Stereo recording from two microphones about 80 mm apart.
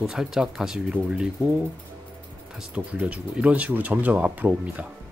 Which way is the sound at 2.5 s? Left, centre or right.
Centre.